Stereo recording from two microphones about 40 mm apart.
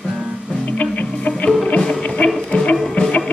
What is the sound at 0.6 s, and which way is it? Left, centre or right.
Music, left.